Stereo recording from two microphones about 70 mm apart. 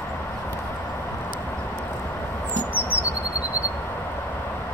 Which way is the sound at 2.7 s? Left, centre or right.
Right.